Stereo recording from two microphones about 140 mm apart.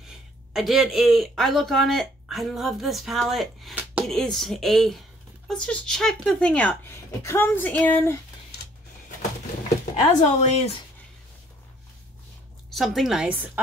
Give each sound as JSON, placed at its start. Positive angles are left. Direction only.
{"t": 0.5, "sound": "a woman's voice", "side_deg": 0}
{"t": 10.0, "sound": "speech", "side_deg": 50}
{"t": 12.7, "sound": "speech", "side_deg": 0}